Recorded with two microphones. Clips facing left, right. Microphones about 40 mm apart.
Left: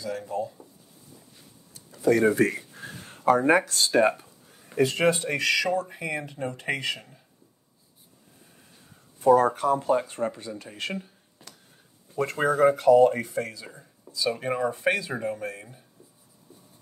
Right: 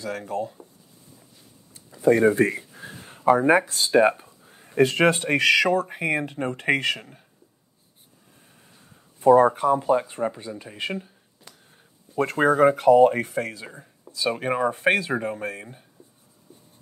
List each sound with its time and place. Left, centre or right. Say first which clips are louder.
0.0 s speech: right 2 dB; right
1.7 s speech: right 3 dB; right
3.3 s speech: right 2 dB; centre
4.1 s a sound: right 2 dB; right
4.7 s speech: right 3 dB; right
9.2 s speech: right 3 dB; right
9.5 s speech: right 3 dB; centre
12.2 s speech: right 3 dB; right
13.2 s speech: right 3 dB; right
16.5 s writing: right 1 dB; right